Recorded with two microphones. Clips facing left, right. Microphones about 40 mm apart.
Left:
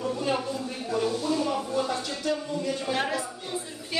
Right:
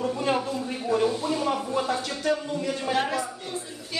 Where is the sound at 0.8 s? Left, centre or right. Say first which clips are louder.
Right 3 dB; right.